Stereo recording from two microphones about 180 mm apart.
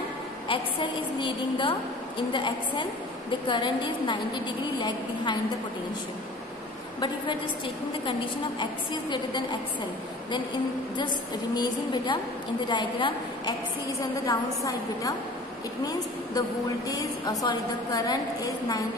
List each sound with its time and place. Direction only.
1.2 s a woman's voice: 30° left (ahead or behind)
8.0 s a woman's voice: 25° left (ahead or behind)
11.5 s a woman's voice: 25° left (ahead or behind)